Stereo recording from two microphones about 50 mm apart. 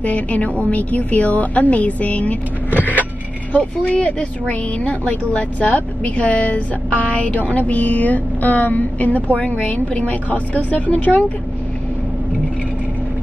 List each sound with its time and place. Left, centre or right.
0.0 s a woman's voice: left
3.5 s speech: left